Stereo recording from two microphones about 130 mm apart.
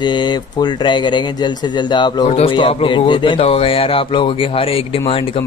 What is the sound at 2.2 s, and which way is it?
A man's voice, 50° left (ahead or behind).